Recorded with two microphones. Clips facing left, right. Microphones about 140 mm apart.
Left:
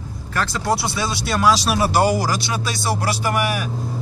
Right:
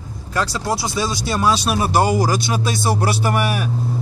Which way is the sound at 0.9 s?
20° right (ahead or behind).